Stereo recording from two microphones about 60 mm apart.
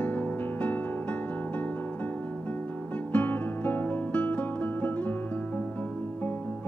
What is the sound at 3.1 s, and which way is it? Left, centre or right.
Music, left.